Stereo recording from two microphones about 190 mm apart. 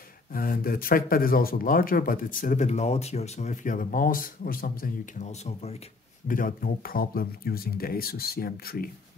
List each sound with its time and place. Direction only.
0.3 s speech: 50° left (ahead or behind)
6.2 s speech: 45° left (ahead or behind)